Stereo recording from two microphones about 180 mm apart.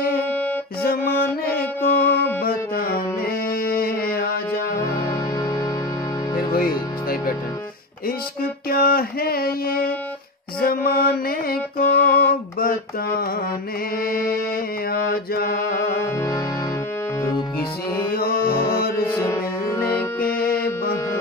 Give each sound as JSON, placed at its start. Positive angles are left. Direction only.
{"t": 1.8, "sound": "music", "side_deg": 10}
{"t": 2.4, "sound": "music", "side_deg": 55}
{"t": 6.5, "sound": "music", "side_deg": 55}
{"t": 8.6, "sound": "music", "side_deg": 55}
{"t": 10.6, "sound": "mantra", "side_deg": 55}
{"t": 14.0, "sound": "music", "side_deg": 55}
{"t": 14.9, "sound": "mantra", "side_deg": 55}
{"t": 15.8, "sound": "music", "side_deg": 15}
{"t": 18.1, "sound": "music", "side_deg": 55}
{"t": 19.0, "sound": "music", "side_deg": 15}
{"t": 20.2, "sound": "music", "side_deg": 60}